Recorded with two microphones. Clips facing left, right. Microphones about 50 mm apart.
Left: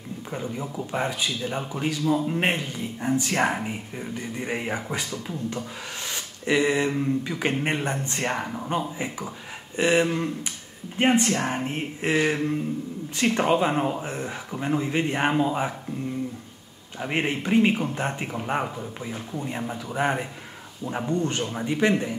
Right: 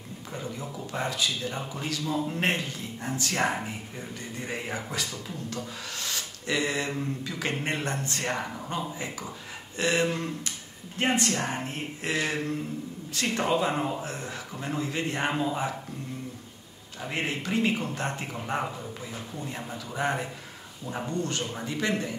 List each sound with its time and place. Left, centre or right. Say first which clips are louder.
0.3 s speech: left 4 dB; left
17.0 s speech: left 5 dB; left